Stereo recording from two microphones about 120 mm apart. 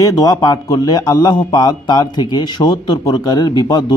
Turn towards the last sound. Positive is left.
turn(degrees=40)  # may be behind; listen again after turning